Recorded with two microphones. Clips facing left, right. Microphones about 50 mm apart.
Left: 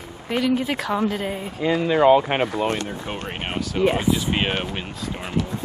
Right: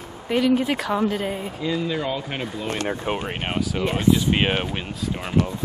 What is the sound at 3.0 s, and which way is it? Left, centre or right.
Speech, centre.